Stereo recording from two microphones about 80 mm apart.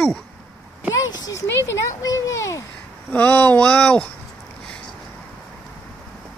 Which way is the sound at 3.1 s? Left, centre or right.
Left.